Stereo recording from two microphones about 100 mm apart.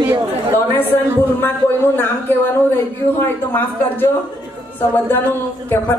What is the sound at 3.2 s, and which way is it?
Speech, 20° left (ahead or behind).